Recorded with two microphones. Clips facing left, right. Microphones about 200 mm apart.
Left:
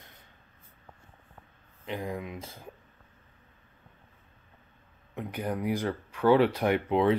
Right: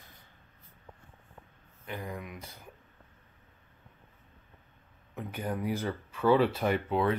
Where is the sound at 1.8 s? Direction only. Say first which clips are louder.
Left 5 dB; 20° left (ahead or behind).